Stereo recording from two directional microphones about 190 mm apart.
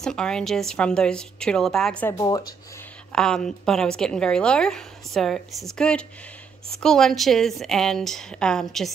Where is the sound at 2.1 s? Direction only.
20° left (ahead or behind).